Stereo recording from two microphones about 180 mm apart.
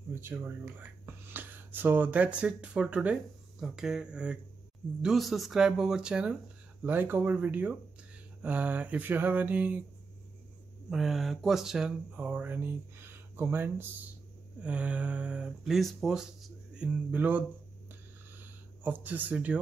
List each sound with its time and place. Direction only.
0.1 s speech: 10° right (ahead or behind)
10.9 s speech: centre (ahead or behind)
19.0 s speech: 10° right (ahead or behind)